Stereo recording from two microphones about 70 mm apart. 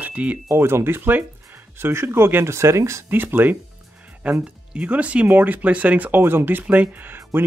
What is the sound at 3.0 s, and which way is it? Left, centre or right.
Speech, right.